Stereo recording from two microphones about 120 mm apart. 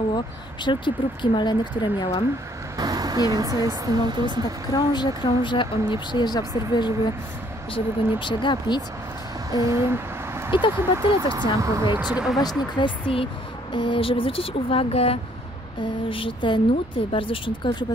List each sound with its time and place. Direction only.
0.7 s speech: 40° left (ahead or behind)
2.8 s speech: 30° right (ahead or behind)
4.7 s speech: 35° left (ahead or behind)
9.5 s speech: 25° right (ahead or behind)
12.0 s speech: 10° right (ahead or behind)
12.4 s speech: 35° left (ahead or behind)